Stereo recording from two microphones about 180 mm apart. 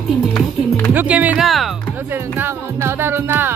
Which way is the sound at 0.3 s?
5° left (ahead or behind).